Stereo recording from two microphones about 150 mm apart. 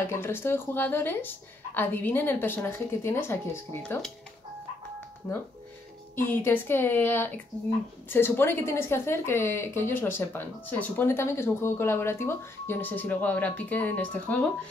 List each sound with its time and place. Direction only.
0.0 s a woman's voice: 15° left (ahead or behind)
6.1 s a woman's voice: 15° left (ahead or behind)